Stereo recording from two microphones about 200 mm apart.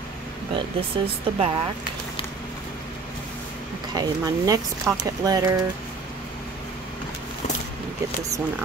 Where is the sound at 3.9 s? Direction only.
20° right (ahead or behind).